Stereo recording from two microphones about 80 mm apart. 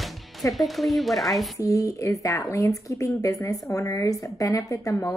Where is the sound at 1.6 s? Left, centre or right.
Left.